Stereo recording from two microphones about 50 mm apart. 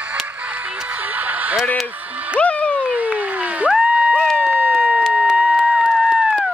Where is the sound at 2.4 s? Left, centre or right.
Left.